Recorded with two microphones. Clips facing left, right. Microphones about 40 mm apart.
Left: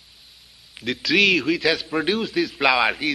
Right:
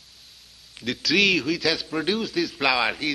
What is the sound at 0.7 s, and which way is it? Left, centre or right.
A man's voice, centre.